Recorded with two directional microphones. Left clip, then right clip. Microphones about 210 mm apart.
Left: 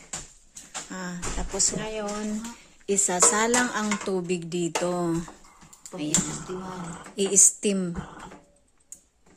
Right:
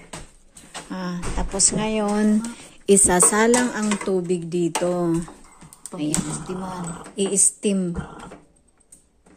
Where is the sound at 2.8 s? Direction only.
25° right (ahead or behind).